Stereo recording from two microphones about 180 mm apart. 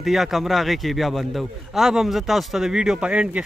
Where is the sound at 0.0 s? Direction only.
Centre (ahead or behind).